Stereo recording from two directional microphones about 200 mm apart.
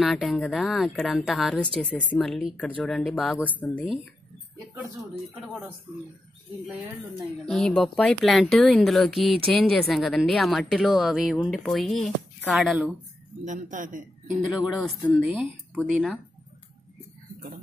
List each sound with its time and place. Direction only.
0.0 s speech: centre (ahead or behind)
3.4 s speech: 10° left (ahead or behind)
7.4 s speech: 5° left (ahead or behind)
13.5 s a man's voice: 40° right (ahead or behind)
14.5 s speech: 5° right (ahead or behind)